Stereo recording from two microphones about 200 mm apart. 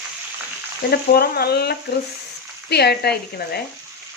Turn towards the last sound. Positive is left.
turn(degrees=55)  # may be behind; listen again after turning